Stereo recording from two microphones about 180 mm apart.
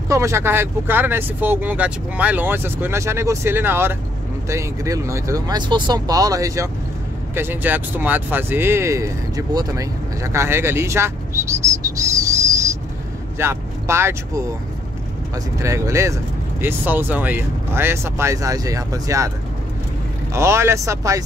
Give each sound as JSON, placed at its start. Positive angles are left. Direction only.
{"t": 0.1, "sound": "speech", "side_deg": -15}
{"t": 20.3, "sound": "speech", "side_deg": -15}